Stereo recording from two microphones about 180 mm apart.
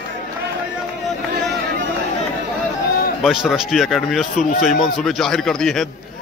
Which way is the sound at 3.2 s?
Centre (ahead or behind).